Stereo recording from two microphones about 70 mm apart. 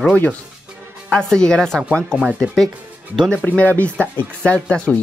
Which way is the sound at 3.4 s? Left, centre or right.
Left.